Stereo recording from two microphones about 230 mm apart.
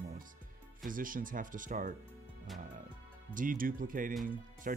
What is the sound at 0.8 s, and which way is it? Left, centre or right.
Speech, right.